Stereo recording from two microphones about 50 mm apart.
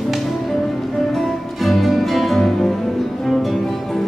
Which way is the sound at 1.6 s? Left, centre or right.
Centre.